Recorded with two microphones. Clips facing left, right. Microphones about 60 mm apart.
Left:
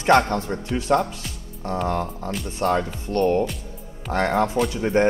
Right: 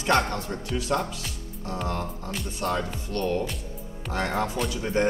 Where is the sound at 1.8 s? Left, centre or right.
Centre.